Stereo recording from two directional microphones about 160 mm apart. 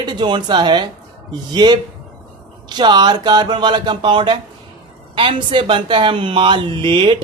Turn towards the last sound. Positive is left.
turn(degrees=-30)  # may be behind; listen again after turning